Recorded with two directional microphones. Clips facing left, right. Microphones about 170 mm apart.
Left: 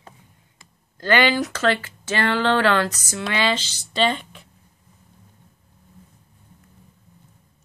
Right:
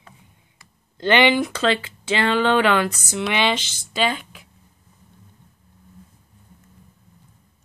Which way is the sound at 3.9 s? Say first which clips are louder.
Left 1 dB; 5° right (ahead or behind).